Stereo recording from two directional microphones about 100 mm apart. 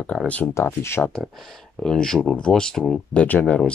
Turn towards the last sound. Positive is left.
turn(degrees=15)  # may be behind; listen again after turning